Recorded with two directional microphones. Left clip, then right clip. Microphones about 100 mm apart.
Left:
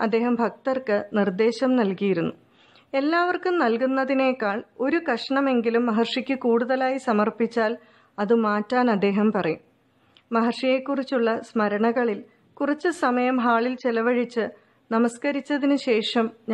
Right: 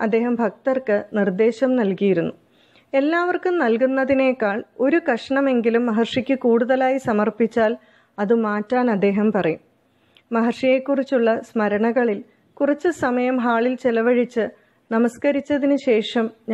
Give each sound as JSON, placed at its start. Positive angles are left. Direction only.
{"t": 0.0, "sound": "speech", "side_deg": -20}